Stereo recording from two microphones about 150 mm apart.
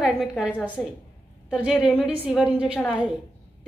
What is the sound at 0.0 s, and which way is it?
A woman's voice, 5° right (ahead or behind).